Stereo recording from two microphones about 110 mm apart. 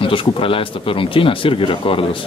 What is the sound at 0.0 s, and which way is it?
Speech, 55° left (ahead or behind).